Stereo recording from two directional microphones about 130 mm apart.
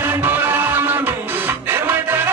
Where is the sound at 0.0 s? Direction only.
15° right (ahead or behind).